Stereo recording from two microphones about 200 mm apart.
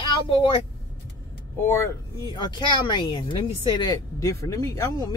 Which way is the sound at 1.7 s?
15° left (ahead or behind).